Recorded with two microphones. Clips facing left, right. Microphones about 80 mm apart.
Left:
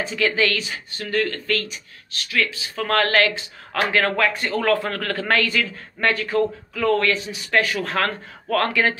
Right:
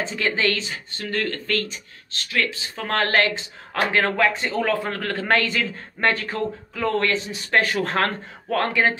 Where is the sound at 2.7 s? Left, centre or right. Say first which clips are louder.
Left 3 dB; right.